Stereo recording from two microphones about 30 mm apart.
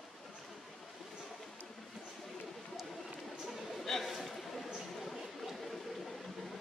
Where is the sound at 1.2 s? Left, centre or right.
Centre.